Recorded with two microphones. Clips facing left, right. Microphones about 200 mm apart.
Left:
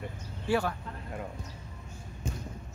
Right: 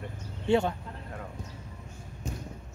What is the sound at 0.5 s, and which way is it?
Speech, 25° right (ahead or behind).